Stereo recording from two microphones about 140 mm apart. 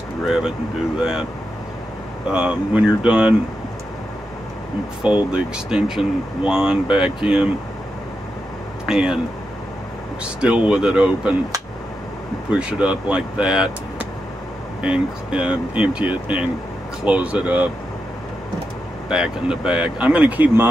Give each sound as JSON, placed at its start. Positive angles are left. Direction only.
{"t": 0.9, "sound": "speech", "side_deg": -5}
{"t": 2.2, "sound": "speech", "side_deg": -5}
{"t": 5.3, "sound": "speech", "side_deg": -5}
{"t": 8.8, "sound": "speech", "side_deg": -5}
{"t": 10.4, "sound": "speech", "side_deg": -10}
{"t": 12.4, "sound": "speech", "side_deg": -10}
{"t": 19.0, "sound": "speech", "side_deg": -5}